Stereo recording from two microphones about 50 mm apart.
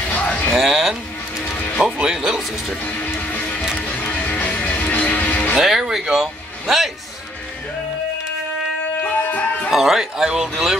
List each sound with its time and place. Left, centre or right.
0.1 s a sound: left
0.5 s music: centre
2.8 s music: left
5.6 s speech: centre
9.0 s music: left
9.7 s speech: centre